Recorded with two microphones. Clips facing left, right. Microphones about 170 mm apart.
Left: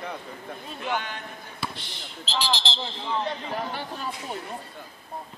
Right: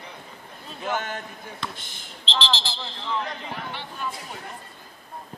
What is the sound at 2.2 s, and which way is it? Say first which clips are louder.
Speech: even; 10° left (ahead or behind).